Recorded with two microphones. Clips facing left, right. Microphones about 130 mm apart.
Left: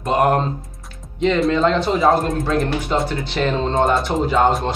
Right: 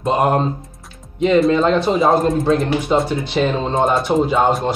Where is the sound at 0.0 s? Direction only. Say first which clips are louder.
Even; 20° right (ahead or behind).